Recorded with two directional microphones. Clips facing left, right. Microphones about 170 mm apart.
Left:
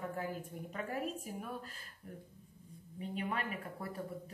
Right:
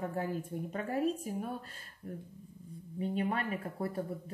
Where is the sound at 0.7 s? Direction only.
35° right (ahead or behind).